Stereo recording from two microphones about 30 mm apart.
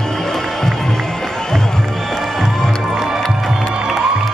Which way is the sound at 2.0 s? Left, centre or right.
Centre.